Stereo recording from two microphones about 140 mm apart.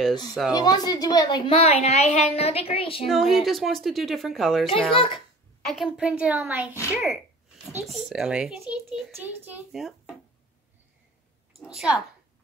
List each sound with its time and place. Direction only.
0.5 s a woman's voice: 30° left (ahead or behind)
3.1 s a child's voice: centre (ahead or behind)
4.9 s a woman's voice: 40° left (ahead or behind)
5.6 s a woman's voice: centre (ahead or behind)
6.7 s a child's voice: 20° left (ahead or behind)
7.8 s a child's voice: centre (ahead or behind)
9.8 s speech: centre (ahead or behind)
11.6 s a child's voice: 5° right (ahead or behind)